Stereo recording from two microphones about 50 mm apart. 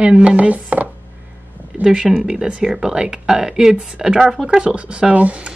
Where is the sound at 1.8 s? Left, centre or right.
Centre.